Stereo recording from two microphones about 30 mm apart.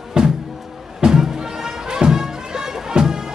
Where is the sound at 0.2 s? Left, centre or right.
Right.